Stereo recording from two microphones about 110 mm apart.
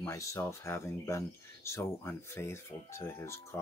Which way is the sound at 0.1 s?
30° left (ahead or behind).